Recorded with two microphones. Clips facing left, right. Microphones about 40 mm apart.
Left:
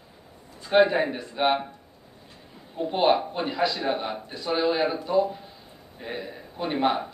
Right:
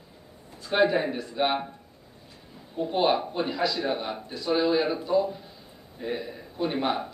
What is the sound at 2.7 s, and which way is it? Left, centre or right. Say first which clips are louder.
A man's voice: left 2 dB; centre.